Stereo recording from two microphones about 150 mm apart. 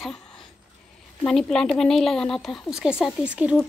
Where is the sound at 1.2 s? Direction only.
5° left (ahead or behind).